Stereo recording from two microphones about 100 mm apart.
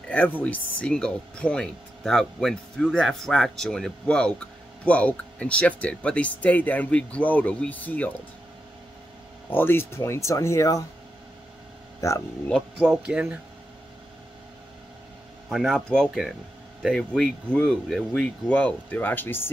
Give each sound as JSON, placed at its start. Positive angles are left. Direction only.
{"t": 0.1, "sound": "speech", "side_deg": 15}
{"t": 9.5, "sound": "speech", "side_deg": 20}
{"t": 12.7, "sound": "speech", "side_deg": -10}
{"t": 15.5, "sound": "speech", "side_deg": 0}